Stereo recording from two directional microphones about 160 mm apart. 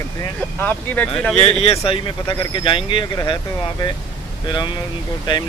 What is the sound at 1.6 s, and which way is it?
Speech, 40° left (ahead or behind).